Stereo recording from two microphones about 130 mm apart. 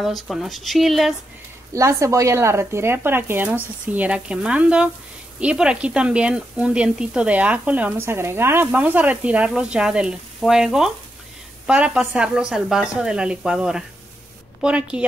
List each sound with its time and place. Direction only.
0.0 s speech: centre (ahead or behind)
1.7 s speech: 25° right (ahead or behind)